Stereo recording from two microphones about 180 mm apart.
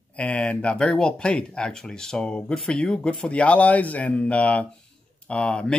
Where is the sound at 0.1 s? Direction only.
5° left (ahead or behind).